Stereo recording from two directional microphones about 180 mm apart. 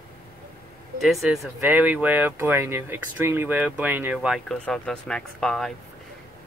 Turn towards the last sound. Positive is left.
turn(degrees=5)  # may be behind; listen again after turning